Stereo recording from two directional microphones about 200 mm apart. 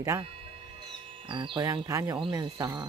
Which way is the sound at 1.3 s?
25° right (ahead or behind).